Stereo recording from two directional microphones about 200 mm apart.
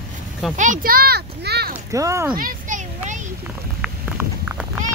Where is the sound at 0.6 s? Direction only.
45° right (ahead or behind).